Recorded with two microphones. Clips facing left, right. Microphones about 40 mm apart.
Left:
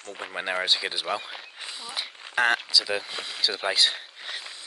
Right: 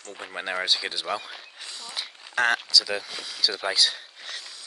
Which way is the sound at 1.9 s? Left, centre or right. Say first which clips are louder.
Left 1 dB; centre.